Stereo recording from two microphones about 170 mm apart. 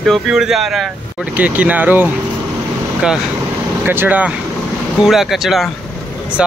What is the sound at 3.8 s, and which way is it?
Speech, 10° right (ahead or behind).